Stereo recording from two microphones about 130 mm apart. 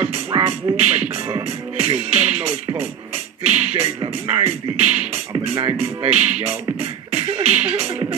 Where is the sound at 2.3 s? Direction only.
10° right (ahead or behind).